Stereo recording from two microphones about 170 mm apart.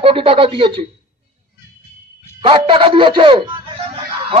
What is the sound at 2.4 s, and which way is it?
A man's voice, 30° right (ahead or behind).